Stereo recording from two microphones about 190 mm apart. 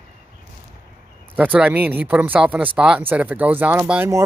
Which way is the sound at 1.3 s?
10° right (ahead or behind).